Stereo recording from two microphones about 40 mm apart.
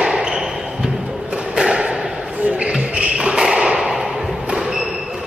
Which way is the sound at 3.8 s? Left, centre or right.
Centre.